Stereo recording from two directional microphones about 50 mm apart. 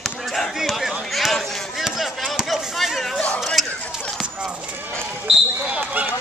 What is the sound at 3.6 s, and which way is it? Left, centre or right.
Run, centre.